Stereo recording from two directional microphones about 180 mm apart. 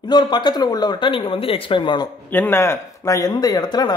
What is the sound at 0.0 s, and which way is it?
Speech, 25° left (ahead or behind).